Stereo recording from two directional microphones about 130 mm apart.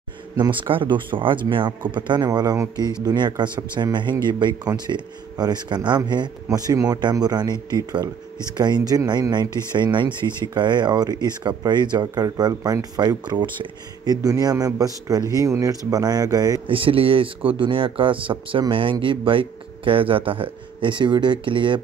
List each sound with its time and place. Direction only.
0.4 s a man's voice: 40° right (ahead or behind)
16.6 s speech: 45° right (ahead or behind)